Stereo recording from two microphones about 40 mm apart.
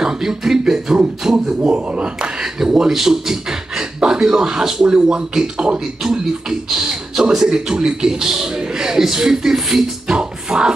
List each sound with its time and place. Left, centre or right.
0.0 s speech: centre
1.6 s speech: right
2.6 s speech: centre
6.7 s a man's voice: centre
10.1 s music: right